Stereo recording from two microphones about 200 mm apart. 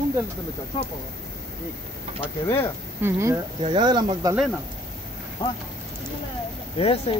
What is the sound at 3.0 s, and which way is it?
Speech, 10° right (ahead or behind).